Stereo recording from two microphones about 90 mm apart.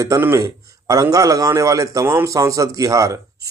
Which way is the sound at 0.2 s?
30° right (ahead or behind).